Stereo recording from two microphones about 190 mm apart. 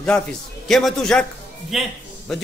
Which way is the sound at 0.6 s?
Centre (ahead or behind).